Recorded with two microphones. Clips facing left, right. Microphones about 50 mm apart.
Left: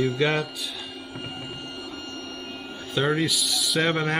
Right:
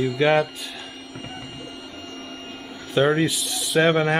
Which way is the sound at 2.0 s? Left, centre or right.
Right.